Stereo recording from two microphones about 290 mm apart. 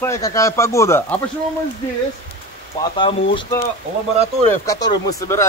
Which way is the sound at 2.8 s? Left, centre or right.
Centre.